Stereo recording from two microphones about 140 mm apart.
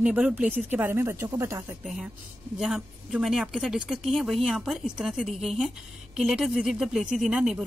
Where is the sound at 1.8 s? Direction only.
5° right (ahead or behind).